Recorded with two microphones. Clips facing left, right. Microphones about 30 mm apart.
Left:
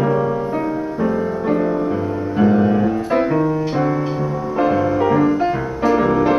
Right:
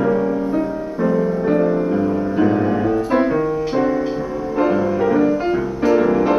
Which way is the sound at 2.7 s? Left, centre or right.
Centre.